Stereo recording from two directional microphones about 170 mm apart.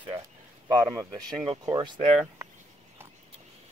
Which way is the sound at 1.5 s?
25° right (ahead or behind).